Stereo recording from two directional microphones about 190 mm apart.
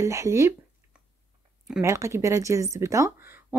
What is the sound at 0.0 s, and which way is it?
Speech, 15° right (ahead or behind).